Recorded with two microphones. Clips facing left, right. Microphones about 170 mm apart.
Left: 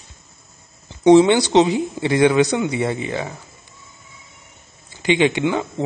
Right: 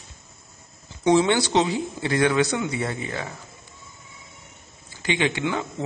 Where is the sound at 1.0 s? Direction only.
20° left (ahead or behind).